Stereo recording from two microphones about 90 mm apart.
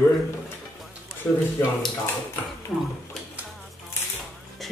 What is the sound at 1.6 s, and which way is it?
Speech, 25° left (ahead or behind).